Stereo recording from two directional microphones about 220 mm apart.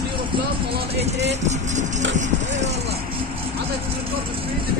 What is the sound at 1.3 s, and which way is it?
Speech, 30° right (ahead or behind).